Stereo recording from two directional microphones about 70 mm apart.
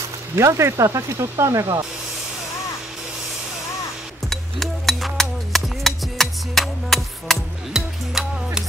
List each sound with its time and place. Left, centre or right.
0.4 s speech: right
4.3 s music: centre